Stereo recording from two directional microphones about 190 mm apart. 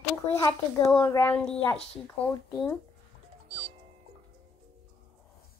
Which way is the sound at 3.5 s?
30° right (ahead or behind).